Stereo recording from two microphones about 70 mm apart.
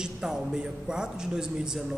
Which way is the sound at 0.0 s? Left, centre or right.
Centre.